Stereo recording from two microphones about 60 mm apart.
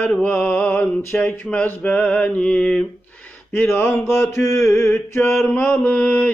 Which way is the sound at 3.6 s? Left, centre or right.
Left.